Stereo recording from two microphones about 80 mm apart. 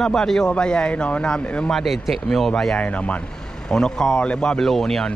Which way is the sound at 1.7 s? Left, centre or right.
Centre.